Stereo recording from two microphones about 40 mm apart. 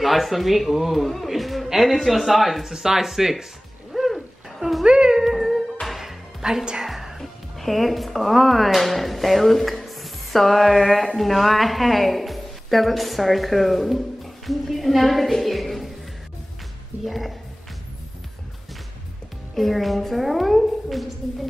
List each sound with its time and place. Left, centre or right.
0.0 s a man's voice: centre
2.7 s speech: centre
3.9 s a sound: centre
4.8 s music: right
5.1 s music: centre
6.4 s a woman's voice: centre
6.8 s music: centre
7.2 s a woman's voice: centre
17.0 s a woman's voice: centre
19.5 s a woman's voice: centre